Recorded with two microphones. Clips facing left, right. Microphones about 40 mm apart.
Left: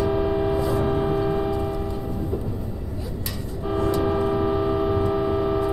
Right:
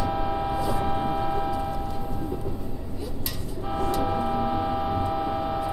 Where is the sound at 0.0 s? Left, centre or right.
Centre.